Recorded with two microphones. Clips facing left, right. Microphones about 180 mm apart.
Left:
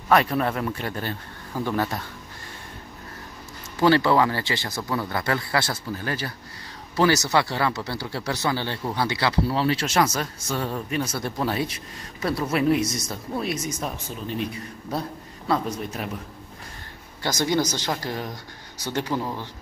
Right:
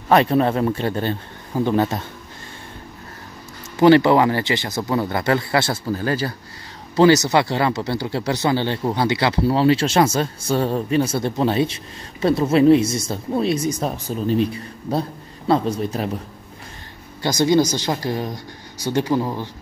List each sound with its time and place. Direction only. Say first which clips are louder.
0.1 s speech: right 5 dB; 25° right (ahead or behind)
3.8 s speech: right 6 dB; 20° right (ahead or behind)
5.9 s speech: right 7 dB; 35° right (ahead or behind)
7.0 s speech: right 6 dB; 20° right (ahead or behind)
17.2 s speech: right 7 dB; 15° right (ahead or behind)